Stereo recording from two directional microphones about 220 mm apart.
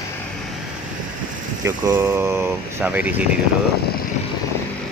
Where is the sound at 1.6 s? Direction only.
10° right (ahead or behind).